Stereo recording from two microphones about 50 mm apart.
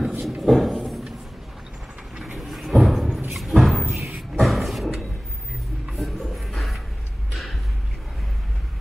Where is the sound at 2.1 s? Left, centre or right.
Centre.